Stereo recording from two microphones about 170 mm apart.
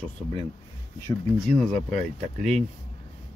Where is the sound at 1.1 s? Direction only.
25° left (ahead or behind).